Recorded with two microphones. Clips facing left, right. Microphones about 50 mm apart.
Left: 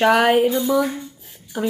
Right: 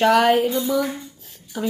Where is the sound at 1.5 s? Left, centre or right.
Centre.